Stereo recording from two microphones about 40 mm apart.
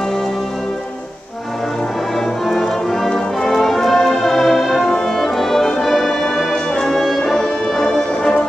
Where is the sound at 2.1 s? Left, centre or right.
Centre.